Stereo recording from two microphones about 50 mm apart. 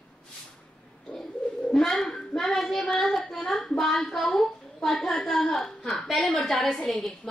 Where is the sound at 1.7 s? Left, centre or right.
Centre.